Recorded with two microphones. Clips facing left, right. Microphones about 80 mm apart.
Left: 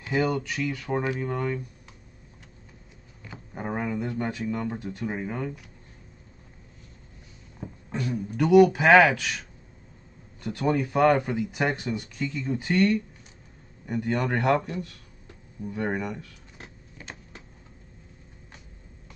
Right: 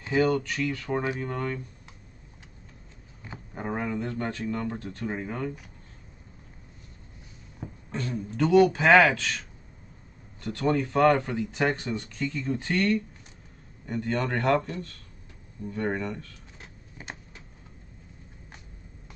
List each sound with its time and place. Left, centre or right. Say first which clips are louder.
0.1 s speech: right 2 dB; centre
3.5 s speech: left 1 dB; centre
7.9 s speech: left 2 dB; centre
10.4 s speech: even; centre